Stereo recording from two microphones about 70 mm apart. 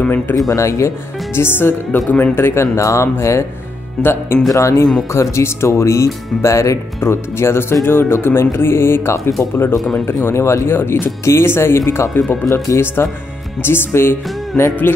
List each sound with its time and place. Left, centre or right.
0.0 s speech: left
0.5 s speech: left
4.6 s speech: left
14.5 s music: centre